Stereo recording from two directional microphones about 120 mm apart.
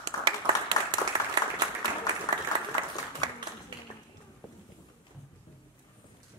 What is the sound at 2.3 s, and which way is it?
Applause, 30° left (ahead or behind).